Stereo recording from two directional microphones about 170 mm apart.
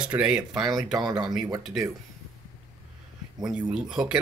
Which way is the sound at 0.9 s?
25° right (ahead or behind).